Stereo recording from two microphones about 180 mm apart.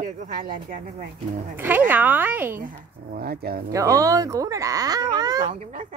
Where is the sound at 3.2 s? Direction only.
60° right (ahead or behind).